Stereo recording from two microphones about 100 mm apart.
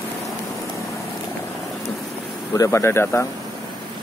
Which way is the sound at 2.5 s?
30° left (ahead or behind).